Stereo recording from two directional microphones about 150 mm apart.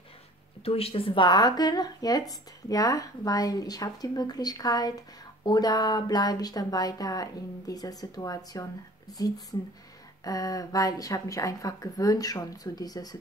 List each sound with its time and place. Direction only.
0.7 s speech: 40° left (ahead or behind)